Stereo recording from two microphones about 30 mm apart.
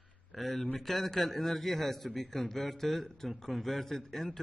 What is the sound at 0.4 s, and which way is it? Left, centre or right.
A man's voice, centre.